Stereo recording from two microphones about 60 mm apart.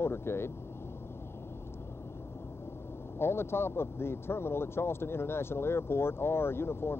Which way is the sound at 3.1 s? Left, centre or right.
Left.